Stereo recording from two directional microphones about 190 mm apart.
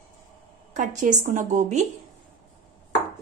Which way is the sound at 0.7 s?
40° right (ahead or behind).